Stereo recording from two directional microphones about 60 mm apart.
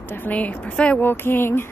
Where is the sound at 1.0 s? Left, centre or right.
Left.